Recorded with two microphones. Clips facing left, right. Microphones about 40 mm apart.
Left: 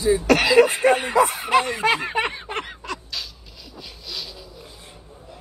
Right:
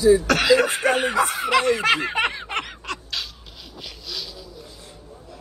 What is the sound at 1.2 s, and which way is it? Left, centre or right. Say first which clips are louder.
Snicker: left 1 dB; right.